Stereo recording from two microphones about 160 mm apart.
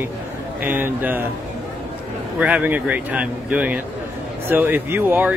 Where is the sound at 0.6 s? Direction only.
10° right (ahead or behind).